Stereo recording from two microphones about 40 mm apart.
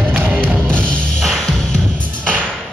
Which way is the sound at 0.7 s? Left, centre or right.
Left.